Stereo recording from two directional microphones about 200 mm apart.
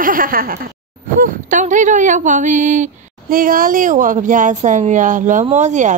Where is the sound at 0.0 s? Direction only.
45° right (ahead or behind).